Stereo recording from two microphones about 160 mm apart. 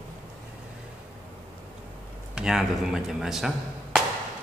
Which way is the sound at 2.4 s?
5° right (ahead or behind).